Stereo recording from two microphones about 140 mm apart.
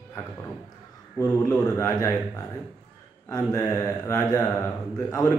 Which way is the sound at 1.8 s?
20° left (ahead or behind).